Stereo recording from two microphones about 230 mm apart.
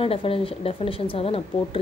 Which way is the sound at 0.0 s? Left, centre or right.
Left.